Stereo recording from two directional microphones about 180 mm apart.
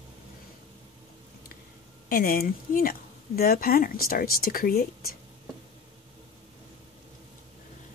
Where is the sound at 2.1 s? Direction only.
55° left (ahead or behind).